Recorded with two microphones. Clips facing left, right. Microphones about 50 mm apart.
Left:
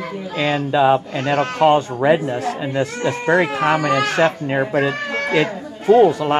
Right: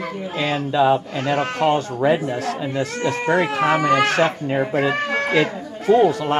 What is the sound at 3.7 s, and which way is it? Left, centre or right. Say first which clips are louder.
Speech: right 2 dB; centre.